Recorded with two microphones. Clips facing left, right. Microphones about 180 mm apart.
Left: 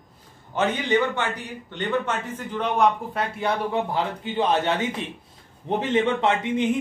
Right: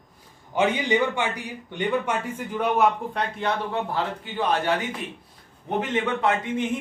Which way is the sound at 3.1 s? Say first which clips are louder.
Left 1 dB; 10° left (ahead or behind).